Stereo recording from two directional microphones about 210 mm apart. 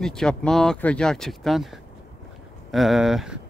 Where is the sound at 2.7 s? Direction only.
Centre (ahead or behind).